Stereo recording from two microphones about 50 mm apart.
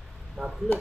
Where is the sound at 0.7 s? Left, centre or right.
Left.